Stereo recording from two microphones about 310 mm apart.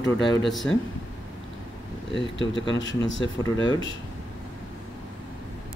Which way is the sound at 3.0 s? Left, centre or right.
Left.